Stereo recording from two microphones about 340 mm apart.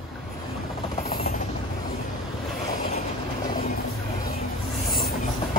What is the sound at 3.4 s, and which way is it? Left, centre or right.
Vehicle, left.